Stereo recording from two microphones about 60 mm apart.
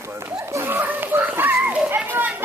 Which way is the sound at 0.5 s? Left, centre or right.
Right.